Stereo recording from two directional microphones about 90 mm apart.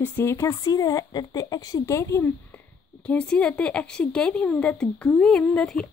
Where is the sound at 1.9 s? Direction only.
30° left (ahead or behind).